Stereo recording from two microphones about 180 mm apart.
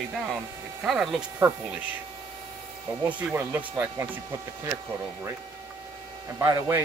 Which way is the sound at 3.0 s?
10° right (ahead or behind).